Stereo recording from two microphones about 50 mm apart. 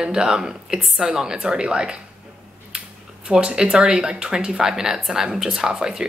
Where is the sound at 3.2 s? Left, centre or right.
Centre.